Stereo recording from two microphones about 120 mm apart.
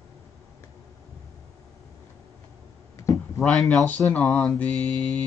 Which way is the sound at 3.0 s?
25° left (ahead or behind).